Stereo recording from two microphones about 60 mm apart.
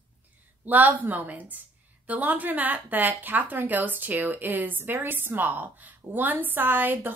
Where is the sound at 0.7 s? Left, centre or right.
Right.